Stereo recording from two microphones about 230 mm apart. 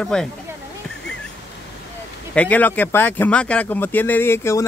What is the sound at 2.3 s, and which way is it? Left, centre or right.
Speech, centre.